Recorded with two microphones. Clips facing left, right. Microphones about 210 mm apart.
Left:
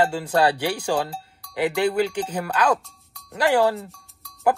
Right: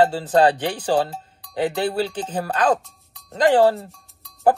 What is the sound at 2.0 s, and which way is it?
Speech, 10° left (ahead or behind).